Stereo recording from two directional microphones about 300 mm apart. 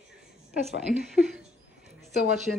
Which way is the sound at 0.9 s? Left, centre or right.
Centre.